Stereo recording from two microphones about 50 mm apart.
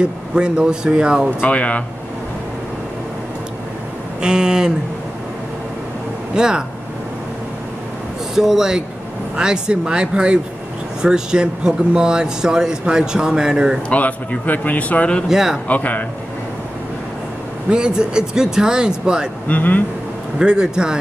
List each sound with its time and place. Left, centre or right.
0.0 s speech: centre
1.5 s speech: left
4.2 s speech: centre
6.3 s speech: centre
8.4 s speech: centre
13.8 s speech: left
15.2 s speech: centre
15.7 s speech: left
17.6 s speech: centre
19.4 s speech: left
20.3 s speech: centre